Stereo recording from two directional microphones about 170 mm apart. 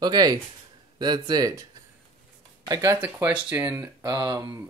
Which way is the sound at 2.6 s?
20° right (ahead or behind).